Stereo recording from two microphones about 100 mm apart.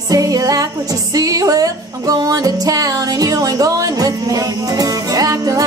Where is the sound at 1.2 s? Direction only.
35° right (ahead or behind).